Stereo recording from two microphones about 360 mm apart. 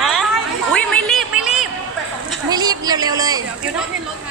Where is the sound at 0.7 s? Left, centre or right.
Centre.